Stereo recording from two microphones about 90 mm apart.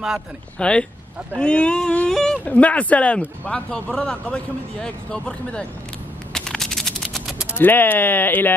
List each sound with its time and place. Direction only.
0.6 s speech: 10° left (ahead or behind)
2.4 s speech: 15° left (ahead or behind)
6.3 s a sound: 5° left (ahead or behind)
7.5 s speech: 20° left (ahead or behind)